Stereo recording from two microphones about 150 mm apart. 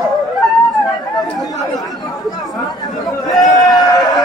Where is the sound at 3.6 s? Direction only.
25° left (ahead or behind).